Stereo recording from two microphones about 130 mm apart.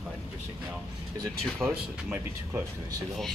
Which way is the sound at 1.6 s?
20° right (ahead or behind).